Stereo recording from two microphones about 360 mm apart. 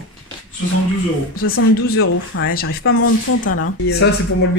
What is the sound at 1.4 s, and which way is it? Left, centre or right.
Speech, left.